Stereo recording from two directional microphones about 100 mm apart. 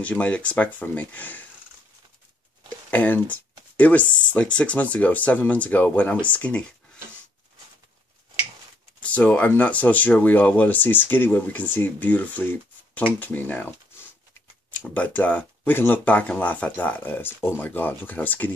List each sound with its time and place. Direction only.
0.0 s speech: 15° left (ahead or behind)
2.9 s speech: 15° left (ahead or behind)
9.0 s speech: 15° left (ahead or behind)
14.8 s speech: 15° left (ahead or behind)